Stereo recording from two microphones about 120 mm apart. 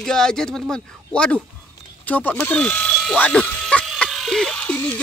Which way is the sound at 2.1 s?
15° left (ahead or behind).